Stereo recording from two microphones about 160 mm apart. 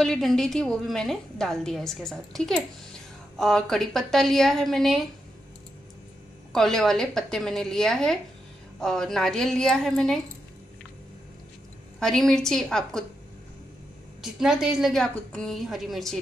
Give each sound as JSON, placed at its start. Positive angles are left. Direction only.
{"t": 0.0, "sound": "a woman's voice", "side_deg": 0}
{"t": 6.5, "sound": "a woman's voice", "side_deg": 0}
{"t": 12.0, "sound": "a woman's voice", "side_deg": 0}
{"t": 14.2, "sound": "a woman's voice", "side_deg": -5}